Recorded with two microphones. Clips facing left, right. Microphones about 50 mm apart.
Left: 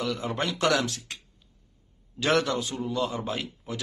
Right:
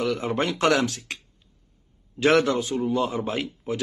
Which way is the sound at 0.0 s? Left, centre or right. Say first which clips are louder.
Right 4 dB; right.